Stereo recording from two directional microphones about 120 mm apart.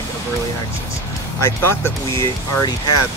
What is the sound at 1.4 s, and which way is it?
Speech, 20° left (ahead or behind).